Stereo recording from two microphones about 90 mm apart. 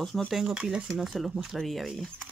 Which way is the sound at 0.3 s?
5° right (ahead or behind).